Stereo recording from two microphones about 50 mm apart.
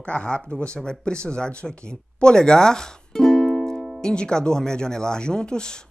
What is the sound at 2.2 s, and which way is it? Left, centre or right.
Music, centre.